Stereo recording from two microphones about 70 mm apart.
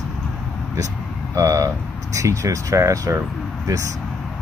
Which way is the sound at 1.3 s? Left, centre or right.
Right.